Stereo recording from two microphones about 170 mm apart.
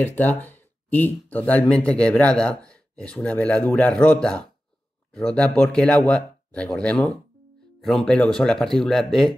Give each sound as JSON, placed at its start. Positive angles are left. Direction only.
{"t": 0.0, "sound": "speech", "side_deg": 10}